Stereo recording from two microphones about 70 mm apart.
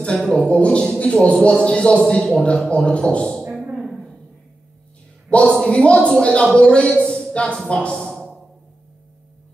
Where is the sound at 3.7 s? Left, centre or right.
Centre.